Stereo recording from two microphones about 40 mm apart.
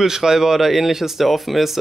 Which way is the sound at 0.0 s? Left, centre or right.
Centre.